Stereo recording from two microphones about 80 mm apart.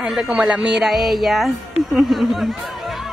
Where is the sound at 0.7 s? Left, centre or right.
Centre.